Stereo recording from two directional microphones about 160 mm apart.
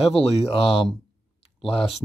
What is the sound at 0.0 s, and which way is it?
Speech, 35° left (ahead or behind).